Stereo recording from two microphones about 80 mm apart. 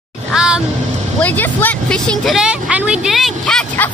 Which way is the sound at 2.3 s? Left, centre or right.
Centre.